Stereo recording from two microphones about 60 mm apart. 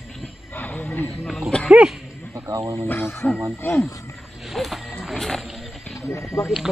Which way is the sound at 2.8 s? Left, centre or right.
Left.